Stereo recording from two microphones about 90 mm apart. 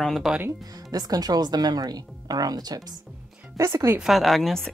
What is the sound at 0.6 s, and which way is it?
Speech, 45° right (ahead or behind).